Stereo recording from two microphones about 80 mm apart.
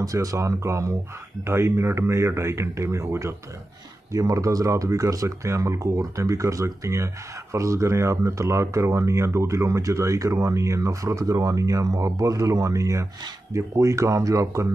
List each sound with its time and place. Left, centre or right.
0.0 s speech: right